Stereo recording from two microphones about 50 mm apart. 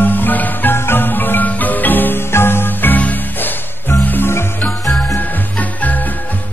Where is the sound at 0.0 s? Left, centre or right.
Left.